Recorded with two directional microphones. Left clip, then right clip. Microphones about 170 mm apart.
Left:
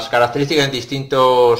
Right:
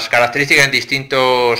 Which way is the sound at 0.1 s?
15° right (ahead or behind).